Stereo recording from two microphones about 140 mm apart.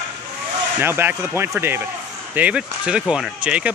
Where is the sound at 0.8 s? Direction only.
15° right (ahead or behind).